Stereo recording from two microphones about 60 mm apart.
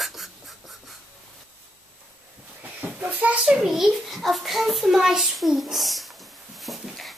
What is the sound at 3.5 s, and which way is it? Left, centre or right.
A child's voice, centre.